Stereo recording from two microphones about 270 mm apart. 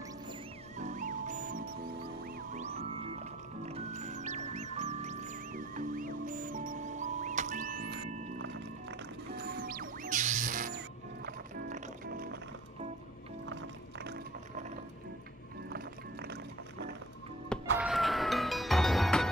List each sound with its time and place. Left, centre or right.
0.7 s music: right
13.5 s music: right
15.7 s music: right
17.7 s music: centre